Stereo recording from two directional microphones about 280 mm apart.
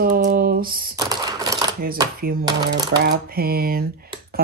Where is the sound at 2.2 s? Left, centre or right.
Right.